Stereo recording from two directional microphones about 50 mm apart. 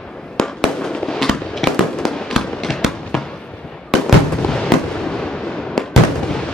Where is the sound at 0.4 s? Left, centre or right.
Centre.